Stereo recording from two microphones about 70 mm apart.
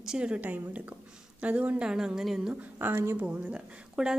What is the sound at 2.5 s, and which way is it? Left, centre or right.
Speech, right.